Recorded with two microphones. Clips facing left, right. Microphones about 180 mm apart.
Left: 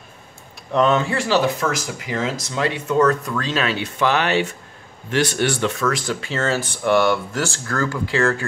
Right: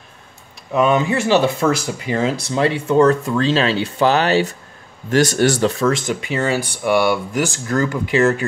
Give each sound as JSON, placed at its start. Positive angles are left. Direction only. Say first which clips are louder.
{"t": 0.7, "sound": "speech", "louder": "right 2 dB", "side_deg": -15}